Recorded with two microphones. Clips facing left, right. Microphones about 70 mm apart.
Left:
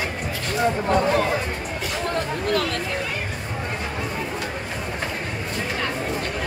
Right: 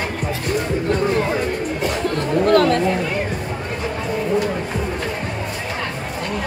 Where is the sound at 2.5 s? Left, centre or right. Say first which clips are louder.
Right 10 dB; right.